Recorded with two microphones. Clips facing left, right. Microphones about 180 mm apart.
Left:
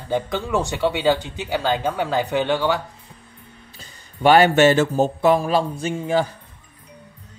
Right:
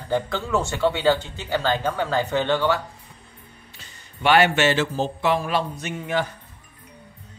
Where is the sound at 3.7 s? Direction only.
40° left (ahead or behind).